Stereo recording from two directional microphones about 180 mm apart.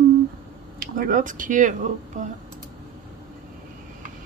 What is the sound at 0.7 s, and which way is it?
Speech, 50° right (ahead or behind).